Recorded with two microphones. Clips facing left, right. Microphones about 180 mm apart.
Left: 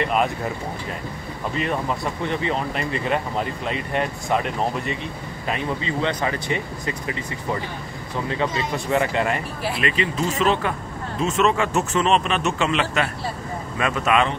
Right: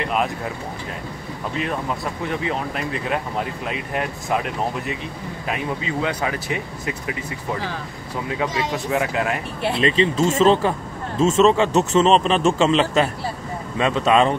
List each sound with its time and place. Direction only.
0.0 s speech: centre (ahead or behind)
1.5 s speech: centre (ahead or behind)
8.7 s speech: 5° right (ahead or behind)
9.6 s a man's voice: 25° right (ahead or behind)